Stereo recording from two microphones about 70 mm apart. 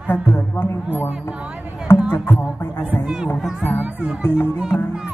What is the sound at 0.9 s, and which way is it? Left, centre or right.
Music, centre.